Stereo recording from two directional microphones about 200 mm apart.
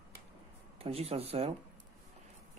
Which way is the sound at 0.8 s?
30° right (ahead or behind).